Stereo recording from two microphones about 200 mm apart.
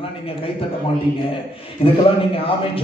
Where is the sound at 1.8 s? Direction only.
30° left (ahead or behind).